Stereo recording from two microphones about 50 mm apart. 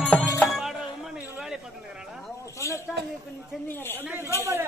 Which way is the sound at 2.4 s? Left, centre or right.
Left.